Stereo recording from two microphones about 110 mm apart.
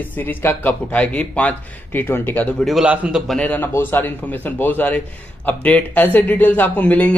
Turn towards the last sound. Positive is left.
turn(degrees=15)  # may be behind; listen again after turning